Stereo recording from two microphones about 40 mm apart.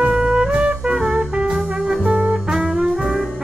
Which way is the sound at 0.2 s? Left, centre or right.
Right.